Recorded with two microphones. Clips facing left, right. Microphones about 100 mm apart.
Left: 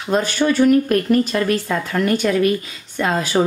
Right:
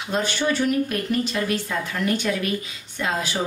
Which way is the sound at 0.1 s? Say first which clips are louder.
Left 6 dB; 50° left (ahead or behind).